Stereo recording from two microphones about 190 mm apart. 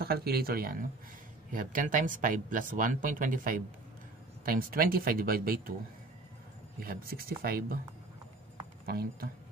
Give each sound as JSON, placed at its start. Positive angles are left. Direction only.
{"t": 0.0, "sound": "speech", "side_deg": -55}
{"t": 6.8, "sound": "speech", "side_deg": -50}
{"t": 8.8, "sound": "speech", "side_deg": -55}